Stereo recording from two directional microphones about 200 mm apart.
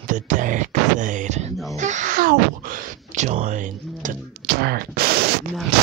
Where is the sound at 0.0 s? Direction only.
40° right (ahead or behind).